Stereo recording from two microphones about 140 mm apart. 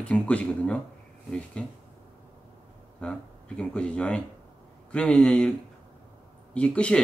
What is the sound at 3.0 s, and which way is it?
Speech, 5° left (ahead or behind).